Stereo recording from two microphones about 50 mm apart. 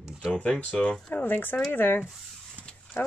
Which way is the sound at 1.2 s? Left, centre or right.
Left.